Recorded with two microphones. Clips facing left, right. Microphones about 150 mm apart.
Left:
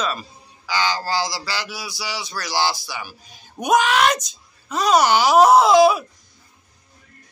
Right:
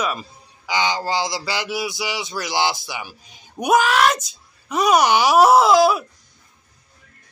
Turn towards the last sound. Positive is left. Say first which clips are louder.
# left 1 dB
turn(degrees=0)  # may be behind; listen again after turning